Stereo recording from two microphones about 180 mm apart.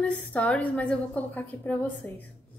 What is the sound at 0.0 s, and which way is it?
A woman's voice, 5° left (ahead or behind).